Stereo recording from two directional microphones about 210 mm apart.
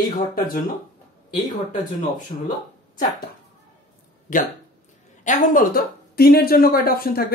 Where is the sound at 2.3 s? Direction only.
40° left (ahead or behind).